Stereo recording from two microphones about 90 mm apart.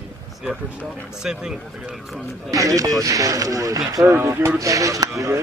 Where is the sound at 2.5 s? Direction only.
40° right (ahead or behind).